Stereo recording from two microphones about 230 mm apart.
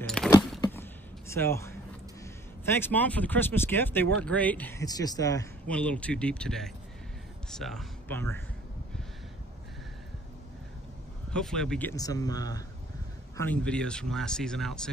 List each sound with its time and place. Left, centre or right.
0.0 s a sound: centre
1.3 s a man's voice: centre
11.3 s speech: centre
12.0 s speech: centre
13.4 s speech: centre